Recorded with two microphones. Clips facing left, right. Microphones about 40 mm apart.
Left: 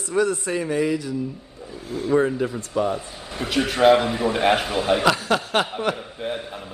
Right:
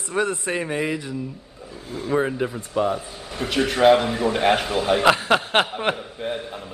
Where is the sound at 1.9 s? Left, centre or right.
Centre.